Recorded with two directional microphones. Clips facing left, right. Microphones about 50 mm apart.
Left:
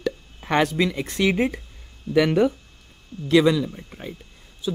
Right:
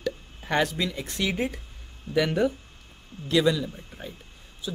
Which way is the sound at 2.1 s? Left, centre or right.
Left.